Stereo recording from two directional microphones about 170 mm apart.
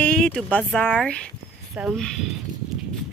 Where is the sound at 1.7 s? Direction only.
5° right (ahead or behind).